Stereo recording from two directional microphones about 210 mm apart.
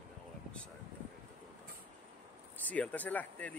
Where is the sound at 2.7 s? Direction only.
5° left (ahead or behind).